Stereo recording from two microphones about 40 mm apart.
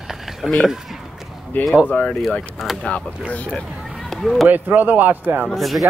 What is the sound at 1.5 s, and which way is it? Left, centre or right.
Speech, left.